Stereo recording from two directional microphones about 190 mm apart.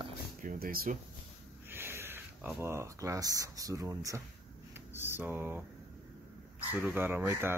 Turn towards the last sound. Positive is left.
turn(degrees=-10)  # may be behind; listen again after turning